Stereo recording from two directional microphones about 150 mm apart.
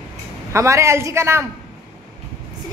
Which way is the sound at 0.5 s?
20° right (ahead or behind).